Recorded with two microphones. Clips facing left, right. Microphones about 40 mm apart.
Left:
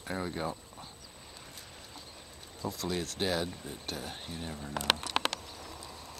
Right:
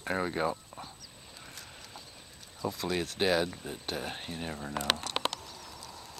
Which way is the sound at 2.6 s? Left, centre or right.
Right.